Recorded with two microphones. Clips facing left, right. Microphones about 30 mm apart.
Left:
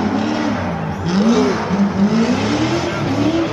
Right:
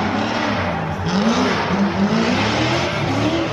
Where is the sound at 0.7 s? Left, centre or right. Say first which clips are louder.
Left 2 dB; centre.